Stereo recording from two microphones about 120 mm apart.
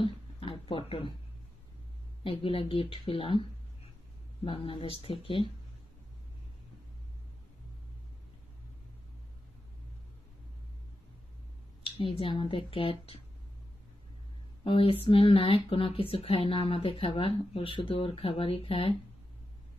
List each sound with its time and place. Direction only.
0.0 s a sound: 45° left (ahead or behind)
2.2 s speech: 50° left (ahead or behind)
4.5 s speech: 45° left (ahead or behind)
11.8 s speech: 45° left (ahead or behind)
14.6 s speech: 50° left (ahead or behind)